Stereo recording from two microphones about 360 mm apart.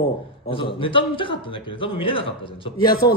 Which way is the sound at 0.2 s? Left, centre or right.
Centre.